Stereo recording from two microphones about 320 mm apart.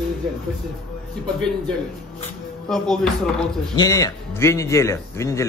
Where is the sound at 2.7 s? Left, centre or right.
Centre.